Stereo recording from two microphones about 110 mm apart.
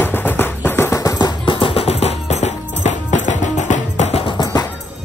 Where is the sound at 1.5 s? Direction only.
55° left (ahead or behind).